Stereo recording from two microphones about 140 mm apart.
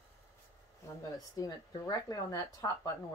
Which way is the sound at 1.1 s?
25° left (ahead or behind).